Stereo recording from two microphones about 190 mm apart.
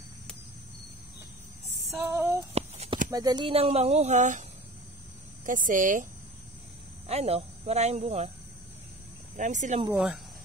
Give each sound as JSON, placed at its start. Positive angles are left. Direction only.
{"t": 2.0, "sound": "female singing", "side_deg": -10}
{"t": 2.5, "sound": "a sound", "side_deg": -35}
{"t": 3.1, "sound": "a woman's voice", "side_deg": -20}
{"t": 7.1, "sound": "speech", "side_deg": -30}
{"t": 9.4, "sound": "speech", "side_deg": -40}
{"t": 9.8, "sound": "speech", "side_deg": -5}